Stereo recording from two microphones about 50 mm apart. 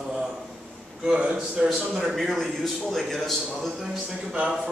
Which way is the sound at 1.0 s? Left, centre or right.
Centre.